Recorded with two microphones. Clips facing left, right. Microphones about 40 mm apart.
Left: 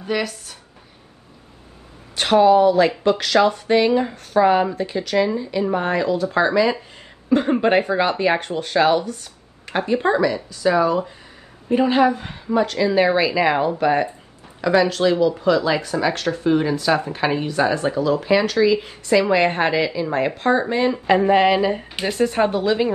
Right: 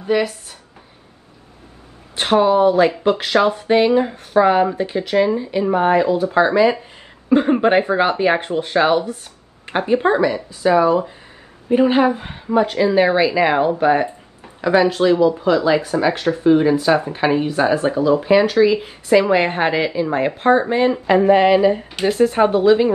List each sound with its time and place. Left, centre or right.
0.0 s speech: centre
2.1 s speech: centre
12.2 s speech: right
15.4 s speech: centre
17.3 s speech: right
19.7 s speech: right
20.0 s speech: centre
21.1 s a woman's voice: centre